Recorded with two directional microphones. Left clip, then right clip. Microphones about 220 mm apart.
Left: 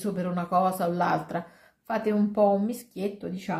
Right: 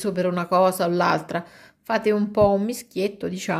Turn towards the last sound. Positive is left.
turn(degrees=-50)  # may be behind; listen again after turning